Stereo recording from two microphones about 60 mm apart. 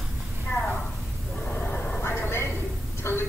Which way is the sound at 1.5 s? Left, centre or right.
Left.